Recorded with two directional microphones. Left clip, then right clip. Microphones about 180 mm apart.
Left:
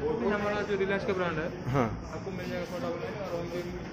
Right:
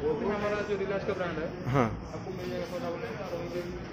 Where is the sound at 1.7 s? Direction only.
10° right (ahead or behind).